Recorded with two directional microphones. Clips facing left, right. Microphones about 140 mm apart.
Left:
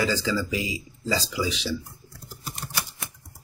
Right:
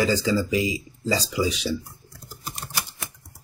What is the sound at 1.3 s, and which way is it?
Speech, 45° right (ahead or behind).